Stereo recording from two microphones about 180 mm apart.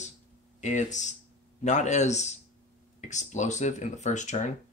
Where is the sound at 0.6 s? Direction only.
40° left (ahead or behind).